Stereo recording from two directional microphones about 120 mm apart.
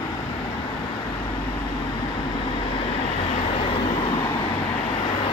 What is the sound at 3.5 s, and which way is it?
Vehicle, 50° left (ahead or behind).